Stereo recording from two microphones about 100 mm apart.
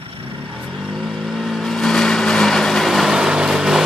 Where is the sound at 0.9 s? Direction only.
Centre (ahead or behind).